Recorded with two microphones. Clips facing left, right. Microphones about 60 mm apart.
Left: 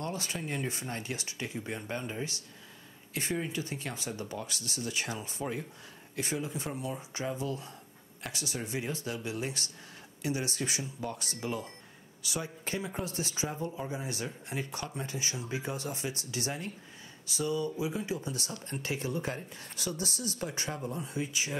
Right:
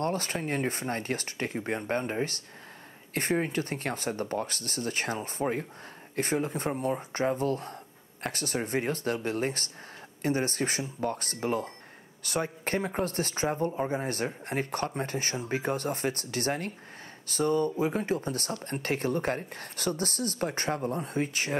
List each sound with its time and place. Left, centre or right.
0.0 s speech: right